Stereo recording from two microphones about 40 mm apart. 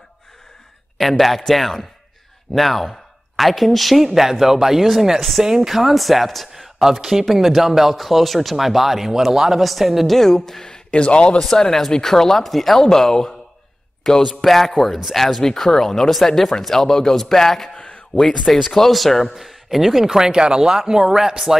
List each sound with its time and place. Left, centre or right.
0.9 s speech: centre
5.4 s speech: centre
10.1 s speech: centre
10.9 s a man's voice: left
11.3 s speech: centre
17.7 s a sound: left
18.5 s speech: centre